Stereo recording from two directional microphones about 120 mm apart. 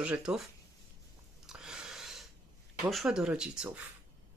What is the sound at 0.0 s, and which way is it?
Speech, 10° right (ahead or behind).